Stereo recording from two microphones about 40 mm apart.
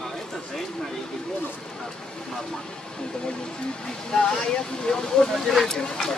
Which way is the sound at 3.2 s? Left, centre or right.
Left.